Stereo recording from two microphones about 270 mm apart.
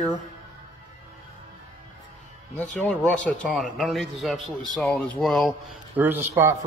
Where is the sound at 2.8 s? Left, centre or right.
Centre.